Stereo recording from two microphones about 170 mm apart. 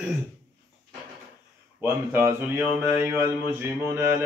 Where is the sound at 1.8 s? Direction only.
15° right (ahead or behind).